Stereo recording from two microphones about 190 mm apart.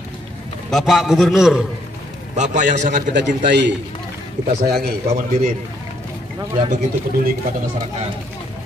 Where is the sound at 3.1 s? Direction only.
70° right (ahead or behind).